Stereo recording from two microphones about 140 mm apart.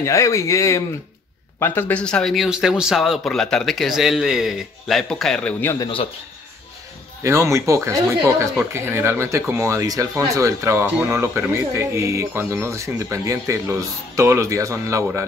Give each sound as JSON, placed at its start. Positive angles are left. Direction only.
{"t": 0.0, "sound": "speech", "side_deg": 20}
{"t": 5.8, "sound": "a man's voice", "side_deg": 35}
{"t": 7.2, "sound": "speech", "side_deg": -20}